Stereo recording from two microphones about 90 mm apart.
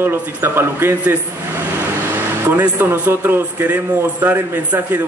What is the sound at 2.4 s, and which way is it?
A man's voice, 25° right (ahead or behind).